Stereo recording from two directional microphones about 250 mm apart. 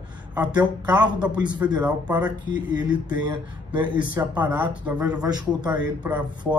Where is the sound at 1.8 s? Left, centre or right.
Centre.